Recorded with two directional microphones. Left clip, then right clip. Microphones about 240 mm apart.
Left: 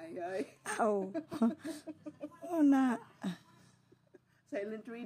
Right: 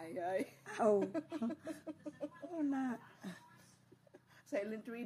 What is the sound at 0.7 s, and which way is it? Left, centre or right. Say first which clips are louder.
Speech: left 1 dB; left.